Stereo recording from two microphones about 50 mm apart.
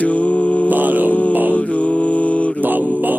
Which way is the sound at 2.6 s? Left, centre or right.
Right.